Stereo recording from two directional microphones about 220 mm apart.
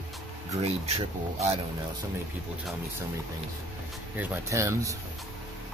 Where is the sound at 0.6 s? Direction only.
30° right (ahead or behind).